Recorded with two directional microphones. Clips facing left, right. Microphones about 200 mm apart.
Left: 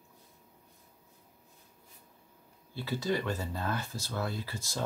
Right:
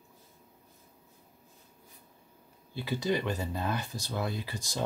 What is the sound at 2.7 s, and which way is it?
Speech, 15° right (ahead or behind).